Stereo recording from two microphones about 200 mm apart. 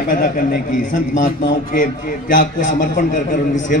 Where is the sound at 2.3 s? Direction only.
40° left (ahead or behind).